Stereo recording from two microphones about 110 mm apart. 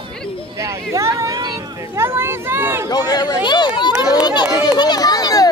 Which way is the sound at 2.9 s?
40° left (ahead or behind).